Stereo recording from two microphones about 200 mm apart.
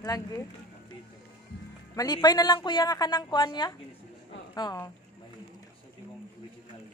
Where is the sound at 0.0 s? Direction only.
15° left (ahead or behind).